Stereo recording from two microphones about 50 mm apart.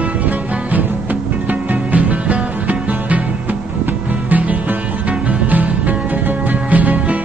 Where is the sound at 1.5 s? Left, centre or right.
Right.